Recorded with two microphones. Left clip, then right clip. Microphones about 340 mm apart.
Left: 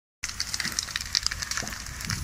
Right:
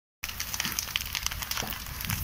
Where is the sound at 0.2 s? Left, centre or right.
Centre.